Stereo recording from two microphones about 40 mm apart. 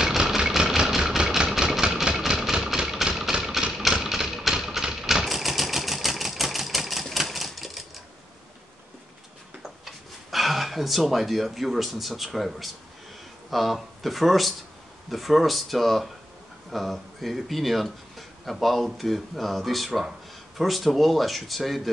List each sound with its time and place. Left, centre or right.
0.2 s engine: centre
0.6 s vehicle: centre
1.6 s engine: centre
3.9 s a sound: centre
5.0 s sewing machine: centre
9.6 s a sound: centre
13.5 s speech: centre